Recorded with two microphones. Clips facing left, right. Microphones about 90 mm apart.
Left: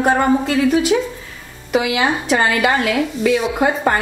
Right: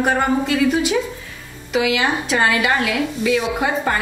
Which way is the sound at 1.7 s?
45° left (ahead or behind).